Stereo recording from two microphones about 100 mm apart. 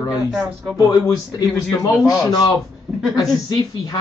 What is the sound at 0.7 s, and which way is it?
Speech, 35° left (ahead or behind).